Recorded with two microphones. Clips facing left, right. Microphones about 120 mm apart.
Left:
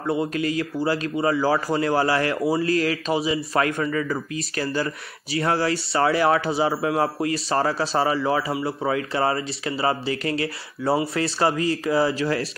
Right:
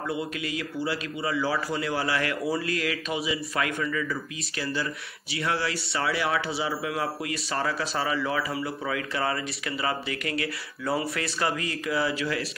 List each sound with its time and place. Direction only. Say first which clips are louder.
0.0 s speech: left 7 dB; 35° left (ahead or behind)